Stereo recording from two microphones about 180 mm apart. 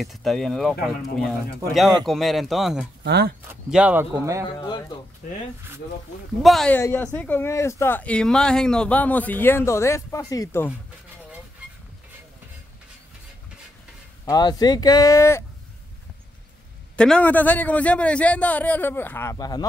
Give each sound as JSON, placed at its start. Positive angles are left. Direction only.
{"t": 0.0, "sound": "speech", "side_deg": 0}
{"t": 3.0, "sound": "speech", "side_deg": -65}
{"t": 3.4, "sound": "speech", "side_deg": -10}
{"t": 6.4, "sound": "speech", "side_deg": 0}
{"t": 6.8, "sound": "speech", "side_deg": 15}
{"t": 14.2, "sound": "speech", "side_deg": 20}
{"t": 16.9, "sound": "speech", "side_deg": 5}